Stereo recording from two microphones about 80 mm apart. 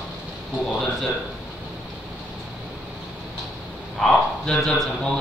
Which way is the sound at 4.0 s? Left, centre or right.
Centre.